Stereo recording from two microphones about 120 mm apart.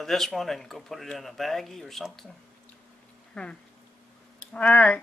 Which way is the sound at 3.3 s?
10° left (ahead or behind).